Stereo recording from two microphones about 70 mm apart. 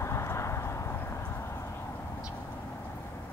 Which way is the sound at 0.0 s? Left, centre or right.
Left.